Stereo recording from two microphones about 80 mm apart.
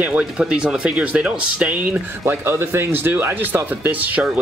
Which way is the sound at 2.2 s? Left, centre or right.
Right.